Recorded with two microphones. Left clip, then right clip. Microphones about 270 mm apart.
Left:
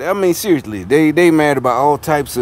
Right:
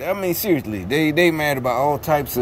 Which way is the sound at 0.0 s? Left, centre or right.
Centre.